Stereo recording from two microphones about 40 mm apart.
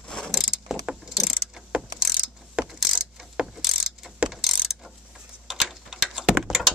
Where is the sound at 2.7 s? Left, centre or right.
Centre.